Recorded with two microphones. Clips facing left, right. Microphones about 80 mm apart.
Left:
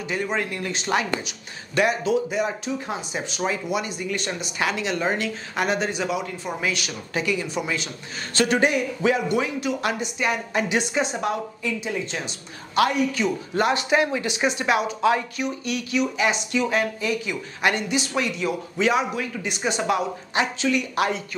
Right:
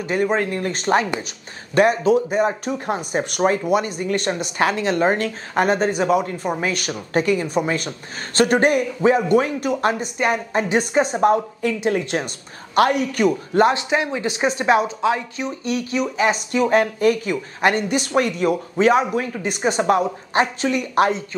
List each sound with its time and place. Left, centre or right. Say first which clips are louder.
0.1 s a man's voice: right 7 dB; right
11.8 s a man's voice: right 8 dB; right
13.6 s speech: right 3 dB; right
15.0 s speech: even; right